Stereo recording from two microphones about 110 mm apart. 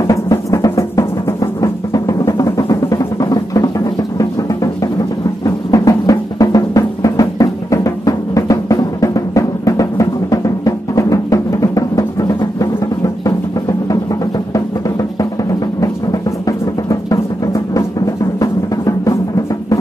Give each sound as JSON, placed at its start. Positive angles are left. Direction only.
{"t": 0.0, "sound": "music", "side_deg": 30}
{"t": 5.4, "sound": "music", "side_deg": 30}
{"t": 15.8, "sound": "music", "side_deg": 30}